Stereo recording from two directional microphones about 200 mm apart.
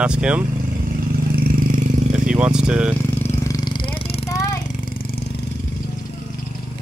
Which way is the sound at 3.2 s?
15° left (ahead or behind).